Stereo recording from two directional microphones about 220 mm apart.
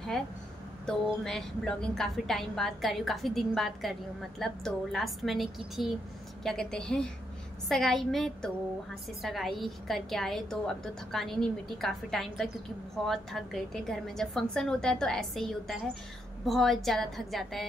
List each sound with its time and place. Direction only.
0.8 s a woman's voice: 5° left (ahead or behind)